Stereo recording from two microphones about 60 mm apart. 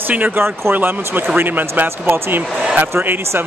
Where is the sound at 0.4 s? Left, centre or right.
Right.